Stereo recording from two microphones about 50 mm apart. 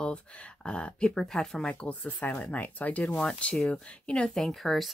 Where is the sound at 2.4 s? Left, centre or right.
Left.